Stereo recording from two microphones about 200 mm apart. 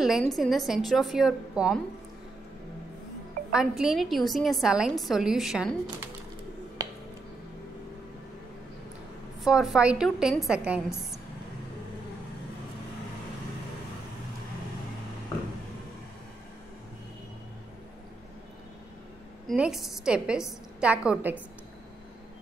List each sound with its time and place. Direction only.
0.2 s a woman's voice: centre (ahead or behind)
3.5 s a woman's voice: 5° right (ahead or behind)
9.4 s a woman's voice: centre (ahead or behind)
19.4 s a woman's voice: 5° right (ahead or behind)